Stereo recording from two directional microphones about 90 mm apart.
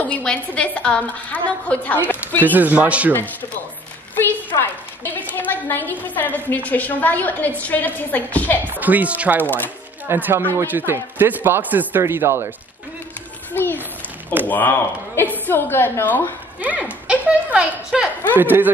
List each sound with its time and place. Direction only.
0.0 s a woman's voice: 15° left (ahead or behind)
2.4 s speech: 20° right (ahead or behind)
4.1 s a sound: 20° left (ahead or behind)
4.6 s a woman's voice: 25° left (ahead or behind)
8.6 s speech: 20° right (ahead or behind)
9.4 s a woman's voice: 20° left (ahead or behind)
10.0 s speech: 25° right (ahead or behind)
13.5 s a child's voice: 20° left (ahead or behind)
17.1 s a child's voice: 15° right (ahead or behind)